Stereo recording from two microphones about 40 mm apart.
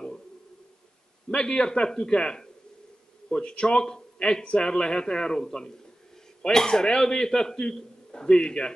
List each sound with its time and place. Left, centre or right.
1.3 s speech: left